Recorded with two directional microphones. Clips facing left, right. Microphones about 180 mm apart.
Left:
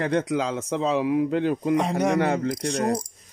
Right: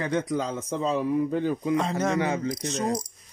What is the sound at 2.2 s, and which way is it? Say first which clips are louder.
Speech: left 3 dB; 65° left (ahead or behind).